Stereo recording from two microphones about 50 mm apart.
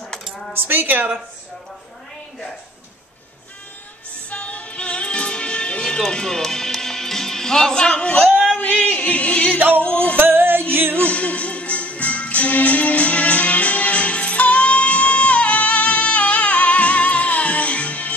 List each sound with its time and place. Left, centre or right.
0.5 s speech: right
4.3 s music: left
8.9 s yodeling: left
9.6 s music: right
9.8 s music: left
10.1 s music: right
11.0 s music: left